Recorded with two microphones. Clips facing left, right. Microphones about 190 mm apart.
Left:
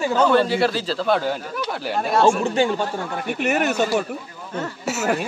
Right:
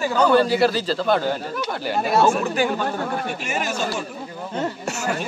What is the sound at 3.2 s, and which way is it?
Speech, 60° left (ahead or behind).